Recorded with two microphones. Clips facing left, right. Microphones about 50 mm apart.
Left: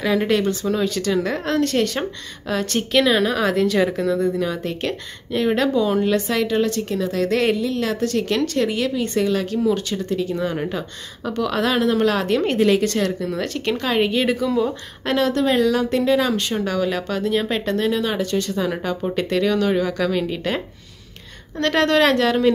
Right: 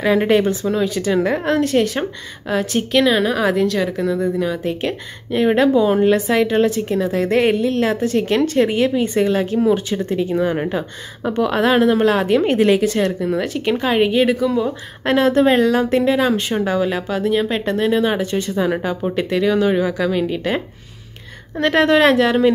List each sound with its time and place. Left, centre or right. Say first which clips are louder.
0.0 s speech: right 4 dB; centre
4.0 s speech: right 1 dB; centre
5.3 s speech: right 5 dB; centre
7.5 s a woman's voice: right 5 dB; right
7.8 s speech: right 4 dB; right; by 14.8 s centre
15.0 s speech: right 5 dB; right